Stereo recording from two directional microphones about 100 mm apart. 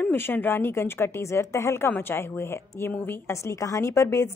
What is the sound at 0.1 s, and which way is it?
A woman's voice, 20° left (ahead or behind).